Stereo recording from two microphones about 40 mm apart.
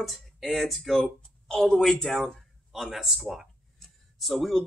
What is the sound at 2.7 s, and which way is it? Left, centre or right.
Speech, centre.